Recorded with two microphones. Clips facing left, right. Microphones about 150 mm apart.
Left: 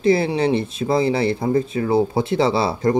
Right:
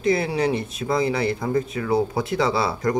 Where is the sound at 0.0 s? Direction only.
30° left (ahead or behind).